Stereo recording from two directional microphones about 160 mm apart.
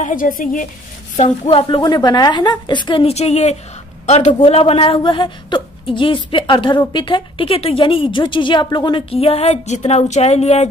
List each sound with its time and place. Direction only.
0.0 s a woman's voice: 60° left (ahead or behind)
1.1 s a woman's voice: 45° left (ahead or behind)
4.3 s a woman's voice: 35° left (ahead or behind)